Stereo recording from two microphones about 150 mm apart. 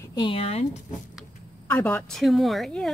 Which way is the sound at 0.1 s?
35° left (ahead or behind).